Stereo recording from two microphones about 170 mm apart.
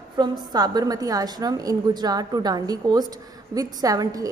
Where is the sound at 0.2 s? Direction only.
25° right (ahead or behind).